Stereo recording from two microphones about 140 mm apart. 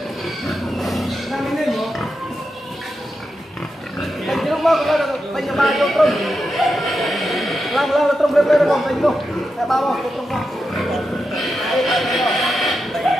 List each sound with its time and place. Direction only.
0.5 s pig: centre (ahead or behind)
4.3 s a sound: centre (ahead or behind)
9.7 s pig: centre (ahead or behind)